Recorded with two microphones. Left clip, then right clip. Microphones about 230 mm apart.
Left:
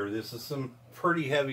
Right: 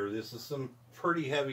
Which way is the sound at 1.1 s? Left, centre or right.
Centre.